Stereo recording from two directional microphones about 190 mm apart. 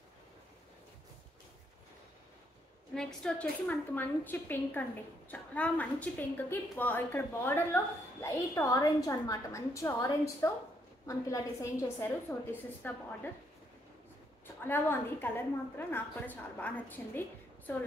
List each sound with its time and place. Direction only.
2.9 s a woman's voice: 5° left (ahead or behind)
14.6 s a woman's voice: 10° left (ahead or behind)